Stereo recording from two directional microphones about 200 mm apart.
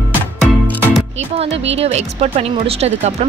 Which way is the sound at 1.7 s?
30° right (ahead or behind).